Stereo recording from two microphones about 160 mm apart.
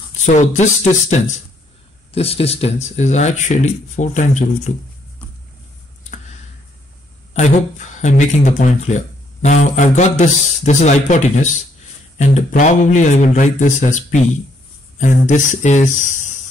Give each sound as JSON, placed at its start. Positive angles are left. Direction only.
{"t": 0.2, "sound": "speech", "side_deg": 45}
{"t": 8.0, "sound": "speech", "side_deg": 50}